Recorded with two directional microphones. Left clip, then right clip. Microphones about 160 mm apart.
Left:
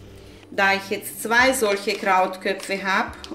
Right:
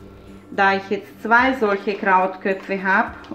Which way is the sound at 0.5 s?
40° right (ahead or behind).